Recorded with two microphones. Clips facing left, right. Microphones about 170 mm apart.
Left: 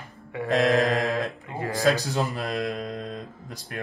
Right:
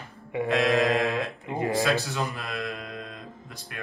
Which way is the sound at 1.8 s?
40° left (ahead or behind).